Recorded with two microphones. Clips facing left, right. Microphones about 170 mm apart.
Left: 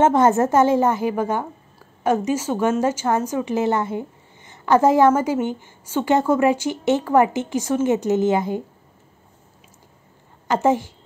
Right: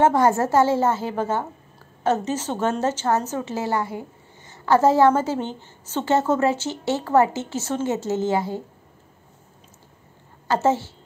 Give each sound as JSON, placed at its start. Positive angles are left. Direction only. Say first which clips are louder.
{"t": 0.0, "sound": "a woman's voice", "louder": "left 2 dB", "side_deg": 20}
{"t": 10.5, "sound": "a woman's voice", "louder": "left 2 dB", "side_deg": 15}